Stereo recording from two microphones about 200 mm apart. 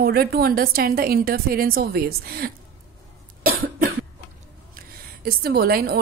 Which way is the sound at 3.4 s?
90° right.